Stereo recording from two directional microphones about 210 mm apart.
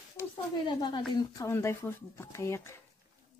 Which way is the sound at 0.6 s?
20° left (ahead or behind).